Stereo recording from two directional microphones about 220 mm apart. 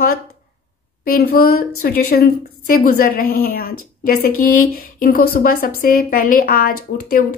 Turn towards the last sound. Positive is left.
turn(degrees=40)  # may be behind; listen again after turning